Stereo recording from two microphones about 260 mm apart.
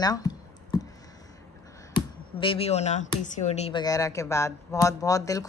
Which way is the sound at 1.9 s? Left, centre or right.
Centre.